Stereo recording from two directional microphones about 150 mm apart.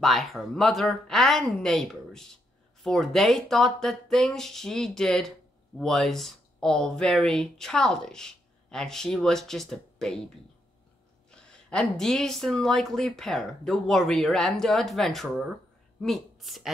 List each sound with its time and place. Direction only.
0.0 s speech: centre (ahead or behind)
11.2 s speech: 5° left (ahead or behind)